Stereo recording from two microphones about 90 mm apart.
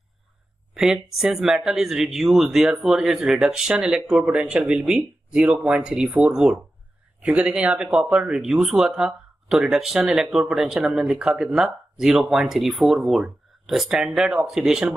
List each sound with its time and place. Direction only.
0.7 s speech: 5° right (ahead or behind)